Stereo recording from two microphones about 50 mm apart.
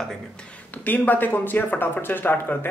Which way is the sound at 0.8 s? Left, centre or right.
Left.